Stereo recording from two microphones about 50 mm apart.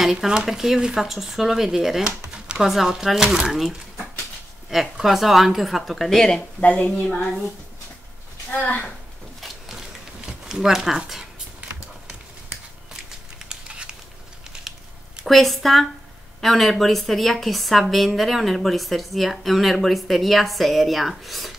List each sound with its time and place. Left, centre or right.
0.0 s speech: centre
2.5 s a woman's voice: centre
6.6 s a woman's voice: left
8.5 s a woman's voice: left
9.4 s a sound: centre
13.5 s a sound: centre
15.2 s a woman's voice: centre